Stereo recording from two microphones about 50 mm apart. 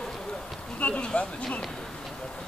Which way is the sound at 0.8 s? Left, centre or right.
Left.